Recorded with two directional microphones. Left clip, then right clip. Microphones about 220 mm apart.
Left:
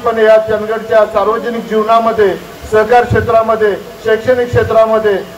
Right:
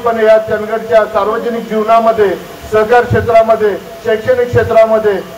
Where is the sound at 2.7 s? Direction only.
35° left (ahead or behind).